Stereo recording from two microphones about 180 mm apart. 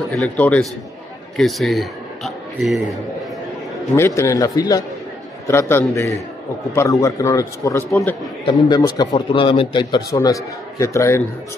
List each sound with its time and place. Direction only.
0.1 s a man's voice: 5° left (ahead or behind)
3.9 s a man's voice: 15° left (ahead or behind)